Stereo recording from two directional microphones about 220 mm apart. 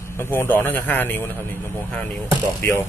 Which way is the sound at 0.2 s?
10° left (ahead or behind).